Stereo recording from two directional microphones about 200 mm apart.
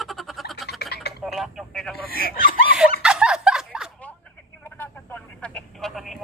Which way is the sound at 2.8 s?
5° right (ahead or behind).